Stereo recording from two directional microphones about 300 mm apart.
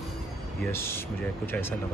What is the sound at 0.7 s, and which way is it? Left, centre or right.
Speech, centre.